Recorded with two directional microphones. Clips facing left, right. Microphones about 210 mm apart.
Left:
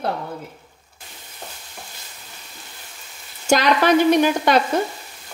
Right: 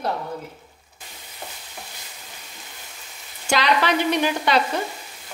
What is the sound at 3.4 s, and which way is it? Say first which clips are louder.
Speech: left 4 dB; 45° left (ahead or behind).